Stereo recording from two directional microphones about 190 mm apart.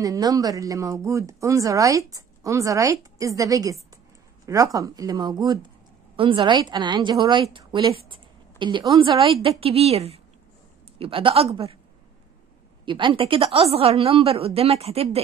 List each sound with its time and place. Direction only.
0.0 s a woman's voice: 20° right (ahead or behind)
12.8 s a woman's voice: 25° right (ahead or behind)